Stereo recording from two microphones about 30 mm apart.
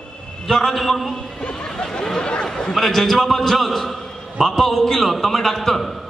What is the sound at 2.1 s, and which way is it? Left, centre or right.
Speech, left.